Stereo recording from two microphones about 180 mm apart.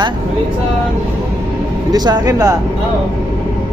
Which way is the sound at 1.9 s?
20° right (ahead or behind).